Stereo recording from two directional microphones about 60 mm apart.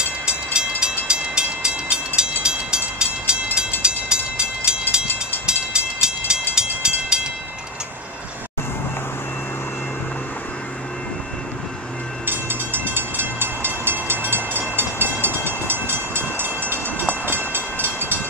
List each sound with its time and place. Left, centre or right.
0.5 s train: centre
12.3 s train: right